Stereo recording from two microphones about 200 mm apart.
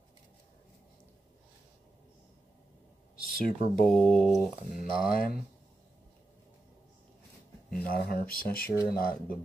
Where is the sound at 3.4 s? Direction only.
40° left (ahead or behind).